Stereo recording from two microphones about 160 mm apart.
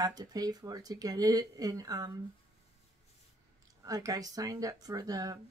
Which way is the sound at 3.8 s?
20° right (ahead or behind).